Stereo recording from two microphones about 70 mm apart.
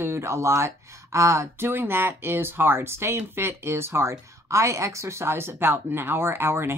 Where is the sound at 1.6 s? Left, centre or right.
Right.